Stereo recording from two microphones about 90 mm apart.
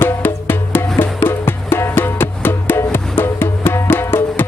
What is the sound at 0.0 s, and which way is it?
Music, 25° left (ahead or behind).